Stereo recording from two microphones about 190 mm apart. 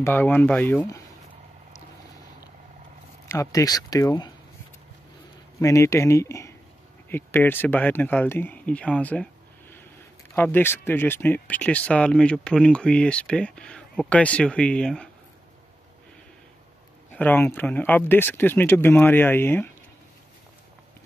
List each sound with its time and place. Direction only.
0.0 s speech: 10° left (ahead or behind)
3.3 s speech: 15° left (ahead or behind)
5.6 s speech: 15° left (ahead or behind)
17.1 s speech: 10° left (ahead or behind)